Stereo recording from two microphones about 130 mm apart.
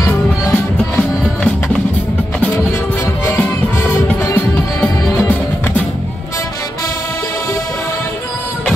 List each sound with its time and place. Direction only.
0.0 s music: 15° left (ahead or behind)
1.2 s music: 5° left (ahead or behind)
3.3 s music: 15° left (ahead or behind)